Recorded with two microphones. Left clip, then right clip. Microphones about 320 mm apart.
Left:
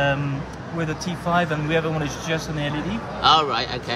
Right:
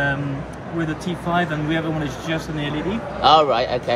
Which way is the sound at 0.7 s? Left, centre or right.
Left.